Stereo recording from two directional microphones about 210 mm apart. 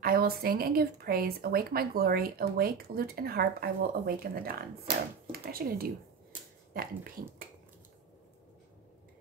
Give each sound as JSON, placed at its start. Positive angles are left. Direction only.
{"t": 0.0, "sound": "speech", "side_deg": -45}